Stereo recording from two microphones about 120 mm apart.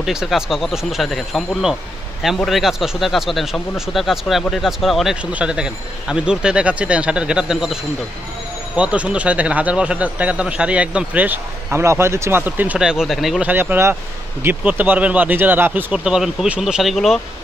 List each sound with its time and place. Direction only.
0.0 s speech: 5° right (ahead or behind)
13.5 s speech: 15° right (ahead or behind); by 17.2 s centre (ahead or behind)